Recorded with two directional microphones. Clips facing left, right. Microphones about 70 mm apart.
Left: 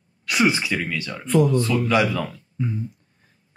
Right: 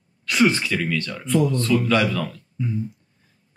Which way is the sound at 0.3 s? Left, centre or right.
Centre.